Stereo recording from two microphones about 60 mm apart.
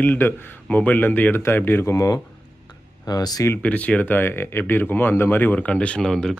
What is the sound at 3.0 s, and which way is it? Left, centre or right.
Speech, left.